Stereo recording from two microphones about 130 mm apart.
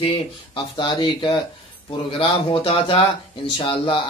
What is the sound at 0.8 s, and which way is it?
A man's voice, 35° left (ahead or behind).